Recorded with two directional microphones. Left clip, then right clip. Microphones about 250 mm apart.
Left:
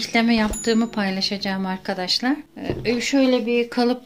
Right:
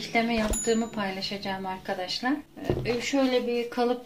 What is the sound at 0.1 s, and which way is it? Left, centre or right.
A woman's voice, left.